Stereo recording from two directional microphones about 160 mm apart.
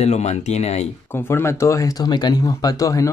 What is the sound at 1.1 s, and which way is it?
Speech, 15° left (ahead or behind).